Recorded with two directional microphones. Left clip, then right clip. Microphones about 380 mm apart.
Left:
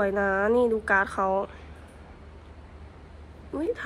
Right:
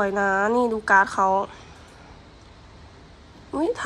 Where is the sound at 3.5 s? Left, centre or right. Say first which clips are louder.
Right 5 dB; centre.